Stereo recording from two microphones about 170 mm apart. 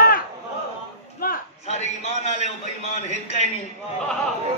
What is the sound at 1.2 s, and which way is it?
Speech, 55° left (ahead or behind).